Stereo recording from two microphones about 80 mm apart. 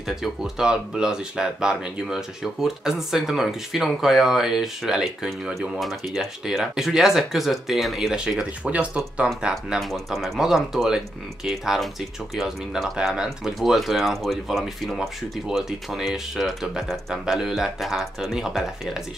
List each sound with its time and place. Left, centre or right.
0.1 s speech: centre
8.6 s speech: centre
9.5 s speech: centre